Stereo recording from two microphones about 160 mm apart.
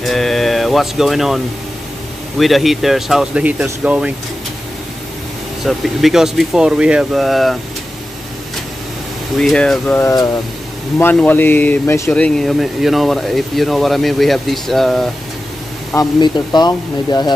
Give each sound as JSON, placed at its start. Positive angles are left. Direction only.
{"t": 0.0, "sound": "a sound", "side_deg": 0}
{"t": 2.3, "sound": "speech", "side_deg": 0}
{"t": 5.7, "sound": "speech", "side_deg": 0}
{"t": 9.4, "sound": "speech", "side_deg": 0}
{"t": 10.0, "sound": "speech", "side_deg": 20}
{"t": 16.2, "sound": "speech", "side_deg": 25}